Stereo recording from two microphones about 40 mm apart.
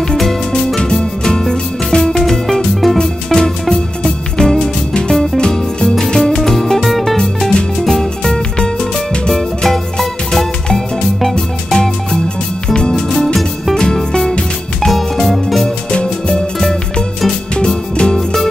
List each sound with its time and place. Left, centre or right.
0.1 s music: centre
0.7 s music: centre
8.2 s music: centre
15.3 s music: centre
15.9 s music: left
17.6 s music: left
18.1 s music: centre